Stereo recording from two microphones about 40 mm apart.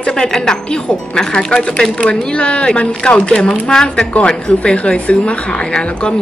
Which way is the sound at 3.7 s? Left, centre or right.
Centre.